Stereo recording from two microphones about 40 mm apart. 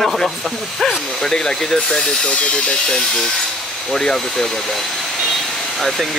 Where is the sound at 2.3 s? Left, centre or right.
Left.